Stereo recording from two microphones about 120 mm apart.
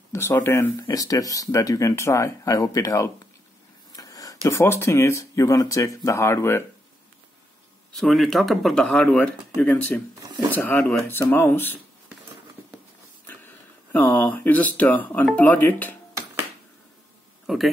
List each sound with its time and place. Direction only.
0.1 s speech: 20° left (ahead or behind)
3.9 s a sound: 30° left (ahead or behind)
4.5 s speech: 20° left (ahead or behind)
8.0 s speech: centre (ahead or behind); by 11.8 s 15° left (ahead or behind)
13.9 s speech: 15° left (ahead or behind)
17.5 s speech: centre (ahead or behind)